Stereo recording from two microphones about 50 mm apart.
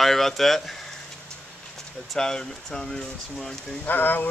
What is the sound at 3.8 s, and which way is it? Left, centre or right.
Speech, left.